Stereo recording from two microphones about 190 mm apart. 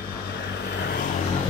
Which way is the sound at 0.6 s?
60° left (ahead or behind).